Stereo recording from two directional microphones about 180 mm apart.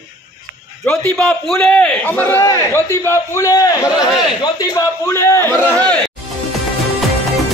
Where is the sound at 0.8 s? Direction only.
5° left (ahead or behind).